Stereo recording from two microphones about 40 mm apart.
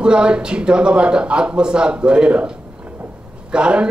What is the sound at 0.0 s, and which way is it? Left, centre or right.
A man's voice, right.